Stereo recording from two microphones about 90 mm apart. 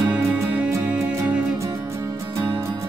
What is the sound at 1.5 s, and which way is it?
Music, 35° right (ahead or behind).